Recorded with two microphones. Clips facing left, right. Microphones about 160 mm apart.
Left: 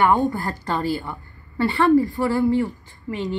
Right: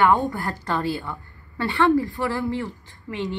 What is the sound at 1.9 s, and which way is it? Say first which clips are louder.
A woman's voice: left 5 dB; 20° left (ahead or behind).